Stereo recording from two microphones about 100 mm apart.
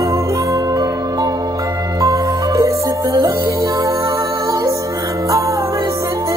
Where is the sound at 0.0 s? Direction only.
35° right (ahead or behind).